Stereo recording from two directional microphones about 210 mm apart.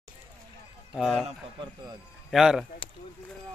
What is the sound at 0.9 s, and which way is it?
Speech, centre (ahead or behind).